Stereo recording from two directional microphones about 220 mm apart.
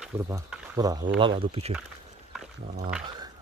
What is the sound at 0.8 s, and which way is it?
Speech, 15° right (ahead or behind).